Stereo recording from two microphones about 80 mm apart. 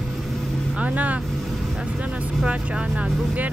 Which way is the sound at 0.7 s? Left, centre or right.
Centre.